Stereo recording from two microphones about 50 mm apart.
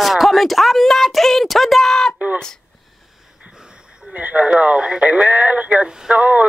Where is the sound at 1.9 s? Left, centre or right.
Centre.